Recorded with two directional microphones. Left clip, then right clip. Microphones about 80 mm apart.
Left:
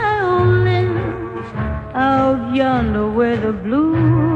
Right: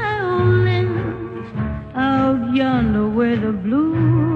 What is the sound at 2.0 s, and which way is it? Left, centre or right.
Music, right.